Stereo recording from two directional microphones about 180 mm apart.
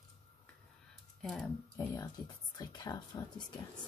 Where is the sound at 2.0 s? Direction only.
20° left (ahead or behind).